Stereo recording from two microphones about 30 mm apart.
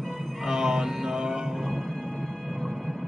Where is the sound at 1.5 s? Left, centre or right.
Centre.